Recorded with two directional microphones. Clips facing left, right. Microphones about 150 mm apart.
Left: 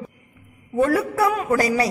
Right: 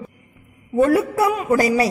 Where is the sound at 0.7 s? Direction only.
20° right (ahead or behind).